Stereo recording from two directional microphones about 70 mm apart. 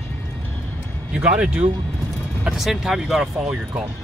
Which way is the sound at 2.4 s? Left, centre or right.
Centre.